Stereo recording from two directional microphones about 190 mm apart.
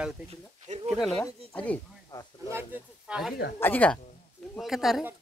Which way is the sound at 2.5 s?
10° right (ahead or behind).